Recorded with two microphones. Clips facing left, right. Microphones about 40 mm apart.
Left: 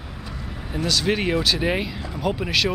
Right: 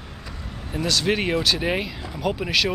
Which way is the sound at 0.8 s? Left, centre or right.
Centre.